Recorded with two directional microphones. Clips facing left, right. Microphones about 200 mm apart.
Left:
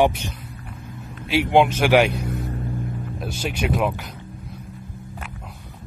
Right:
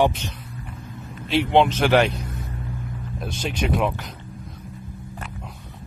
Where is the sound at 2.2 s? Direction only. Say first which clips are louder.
Left 6 dB; 65° left (ahead or behind).